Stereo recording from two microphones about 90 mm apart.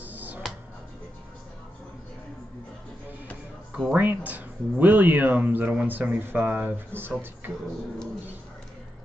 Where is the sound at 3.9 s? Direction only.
20° right (ahead or behind).